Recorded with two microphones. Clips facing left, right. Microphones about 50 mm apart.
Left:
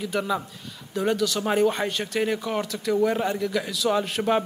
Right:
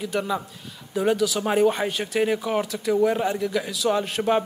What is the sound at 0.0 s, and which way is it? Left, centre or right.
A man's voice, centre.